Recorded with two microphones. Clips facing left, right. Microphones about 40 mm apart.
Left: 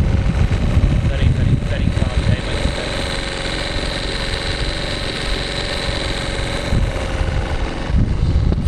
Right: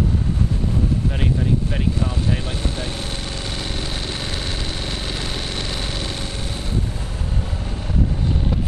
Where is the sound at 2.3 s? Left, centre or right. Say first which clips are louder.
Left 4 dB; left.